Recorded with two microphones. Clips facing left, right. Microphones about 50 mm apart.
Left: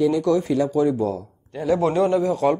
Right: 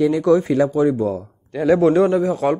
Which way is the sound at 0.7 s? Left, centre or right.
Centre.